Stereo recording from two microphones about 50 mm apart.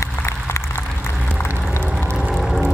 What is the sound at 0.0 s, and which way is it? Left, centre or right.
Applause, left.